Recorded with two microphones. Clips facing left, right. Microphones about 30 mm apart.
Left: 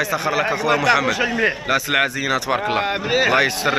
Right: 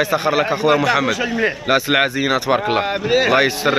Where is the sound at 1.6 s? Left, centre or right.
Right.